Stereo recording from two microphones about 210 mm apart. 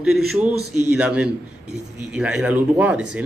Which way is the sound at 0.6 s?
90° right.